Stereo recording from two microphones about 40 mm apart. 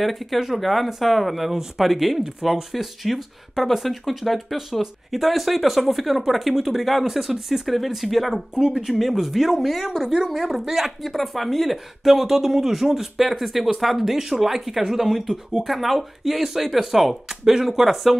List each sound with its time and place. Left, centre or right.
0.0 s speech: centre